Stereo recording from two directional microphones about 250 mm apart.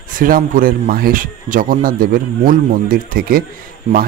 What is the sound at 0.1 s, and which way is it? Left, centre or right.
Speech, right.